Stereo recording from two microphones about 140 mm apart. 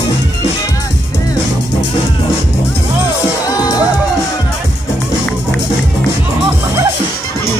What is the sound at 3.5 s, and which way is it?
Music, 25° left (ahead or behind).